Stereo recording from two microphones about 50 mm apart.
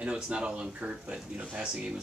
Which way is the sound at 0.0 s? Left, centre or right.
Right.